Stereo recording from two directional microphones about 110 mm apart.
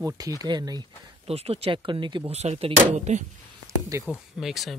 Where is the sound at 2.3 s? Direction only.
75° right (ahead or behind).